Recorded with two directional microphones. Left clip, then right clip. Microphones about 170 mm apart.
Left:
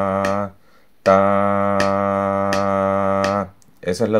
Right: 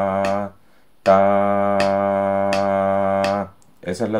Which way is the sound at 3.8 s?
60° left (ahead or behind).